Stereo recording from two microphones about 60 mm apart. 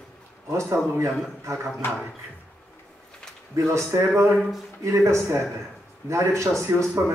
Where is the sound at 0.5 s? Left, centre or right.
Right.